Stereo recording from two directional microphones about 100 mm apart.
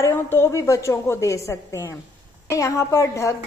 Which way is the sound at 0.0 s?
25° left (ahead or behind).